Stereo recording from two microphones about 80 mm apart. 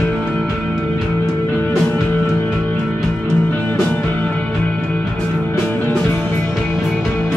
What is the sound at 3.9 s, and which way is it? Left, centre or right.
Music, centre.